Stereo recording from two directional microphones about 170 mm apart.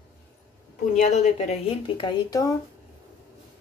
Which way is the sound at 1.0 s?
40° left (ahead or behind).